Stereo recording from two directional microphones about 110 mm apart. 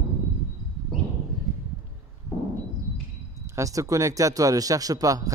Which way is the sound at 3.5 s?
30° right (ahead or behind).